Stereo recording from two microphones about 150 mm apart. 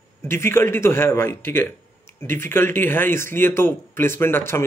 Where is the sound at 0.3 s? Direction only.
15° left (ahead or behind).